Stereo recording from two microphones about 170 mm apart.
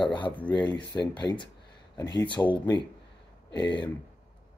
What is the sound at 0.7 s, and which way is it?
Speech, 25° left (ahead or behind).